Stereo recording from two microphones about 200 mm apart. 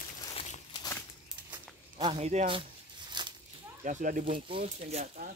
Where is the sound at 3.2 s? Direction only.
20° right (ahead or behind).